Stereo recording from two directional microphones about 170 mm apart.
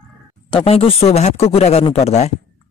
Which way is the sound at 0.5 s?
35° left (ahead or behind).